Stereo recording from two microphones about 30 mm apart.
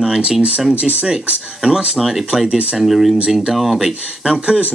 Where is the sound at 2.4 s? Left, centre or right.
Right.